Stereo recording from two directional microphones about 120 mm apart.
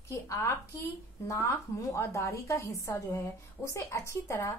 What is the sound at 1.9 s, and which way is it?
A woman's voice, 25° left (ahead or behind).